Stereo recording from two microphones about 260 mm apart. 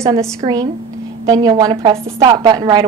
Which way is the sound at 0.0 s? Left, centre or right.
Centre.